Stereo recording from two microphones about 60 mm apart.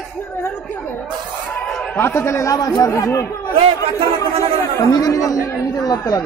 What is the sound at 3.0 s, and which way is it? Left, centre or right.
Speech, left.